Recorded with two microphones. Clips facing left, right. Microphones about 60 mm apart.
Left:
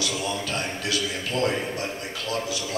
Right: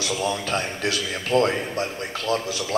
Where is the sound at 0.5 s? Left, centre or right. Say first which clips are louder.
Right 3 dB; right.